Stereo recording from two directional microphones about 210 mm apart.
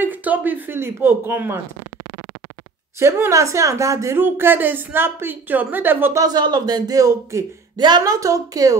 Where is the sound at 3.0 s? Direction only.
15° right (ahead or behind).